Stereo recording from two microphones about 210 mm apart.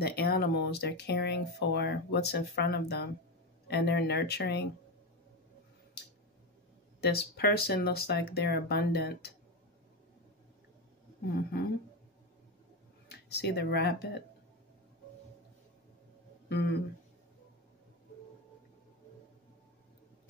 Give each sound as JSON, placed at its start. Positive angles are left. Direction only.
{"t": 0.0, "sound": "speech", "side_deg": 50}
{"t": 7.0, "sound": "speech", "side_deg": 50}
{"t": 13.1, "sound": "speech", "side_deg": 50}
{"t": 16.4, "sound": "speech", "side_deg": 55}